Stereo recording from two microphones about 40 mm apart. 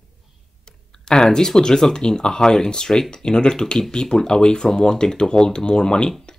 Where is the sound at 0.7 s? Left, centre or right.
Centre.